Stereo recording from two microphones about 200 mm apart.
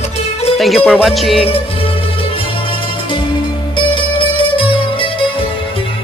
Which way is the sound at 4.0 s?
25° left (ahead or behind).